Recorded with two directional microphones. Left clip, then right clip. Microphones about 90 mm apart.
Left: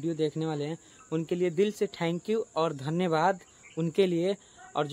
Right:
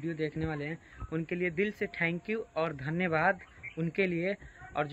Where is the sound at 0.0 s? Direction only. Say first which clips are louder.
Left 5 dB; 25° left (ahead or behind).